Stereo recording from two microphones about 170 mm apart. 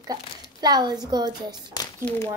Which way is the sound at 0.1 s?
25° right (ahead or behind).